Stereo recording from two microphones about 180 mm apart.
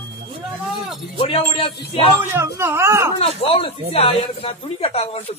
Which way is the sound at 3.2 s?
35° left (ahead or behind).